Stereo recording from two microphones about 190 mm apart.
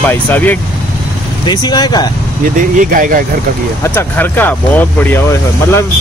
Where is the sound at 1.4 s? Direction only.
20° left (ahead or behind).